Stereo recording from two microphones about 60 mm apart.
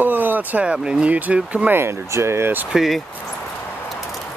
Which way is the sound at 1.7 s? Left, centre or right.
Right.